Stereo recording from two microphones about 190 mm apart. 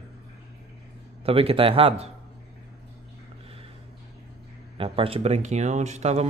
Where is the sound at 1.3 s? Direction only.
30° right (ahead or behind).